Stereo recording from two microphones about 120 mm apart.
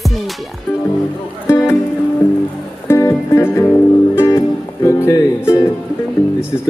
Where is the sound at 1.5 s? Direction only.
20° left (ahead or behind).